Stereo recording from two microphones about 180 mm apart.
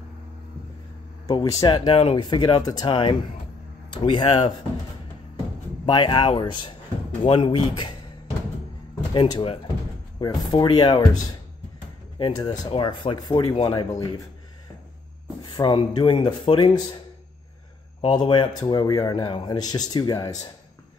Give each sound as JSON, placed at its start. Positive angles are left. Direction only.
{"t": 1.2, "sound": "a man's voice", "side_deg": 20}
{"t": 1.9, "sound": "a man's voice", "side_deg": 30}
{"t": 5.9, "sound": "a man's voice", "side_deg": 25}
{"t": 9.1, "sound": "a man's voice", "side_deg": 25}
{"t": 12.2, "sound": "a man's voice", "side_deg": 25}
{"t": 15.4, "sound": "a man's voice", "side_deg": 25}
{"t": 18.0, "sound": "a man's voice", "side_deg": 30}